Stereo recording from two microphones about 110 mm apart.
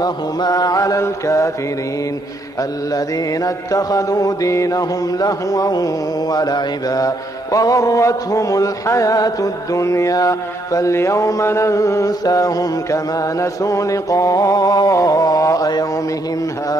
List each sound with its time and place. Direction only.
0.0 s mantra: 35° left (ahead or behind)
3.4 s mantra: 30° left (ahead or behind)